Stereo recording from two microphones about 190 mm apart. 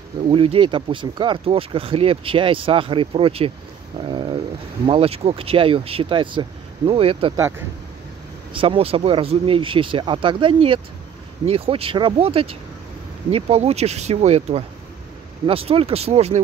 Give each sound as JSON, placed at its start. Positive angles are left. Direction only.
{"t": 0.3, "sound": "speech", "side_deg": -30}
{"t": 7.3, "sound": "speech", "side_deg": -15}
{"t": 8.5, "sound": "speech", "side_deg": -30}